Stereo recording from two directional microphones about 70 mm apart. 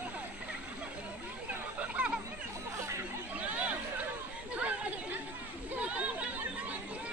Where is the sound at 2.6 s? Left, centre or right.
Right.